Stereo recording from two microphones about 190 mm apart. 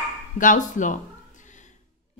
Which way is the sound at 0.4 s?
45° left (ahead or behind).